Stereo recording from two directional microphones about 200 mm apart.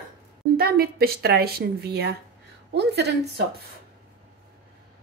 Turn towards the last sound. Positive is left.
turn(degrees=-55)  # may be behind; listen again after turning